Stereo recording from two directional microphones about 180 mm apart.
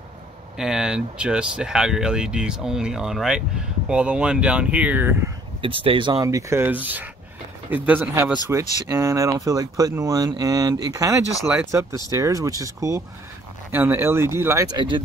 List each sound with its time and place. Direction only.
0.6 s speech: 5° right (ahead or behind)
5.6 s speech: 30° right (ahead or behind)